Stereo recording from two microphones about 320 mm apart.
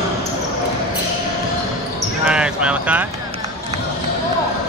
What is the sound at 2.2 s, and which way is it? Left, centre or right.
Clip-clop, centre.